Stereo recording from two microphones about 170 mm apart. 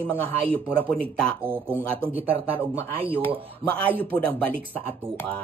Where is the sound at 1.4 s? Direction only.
15° right (ahead or behind).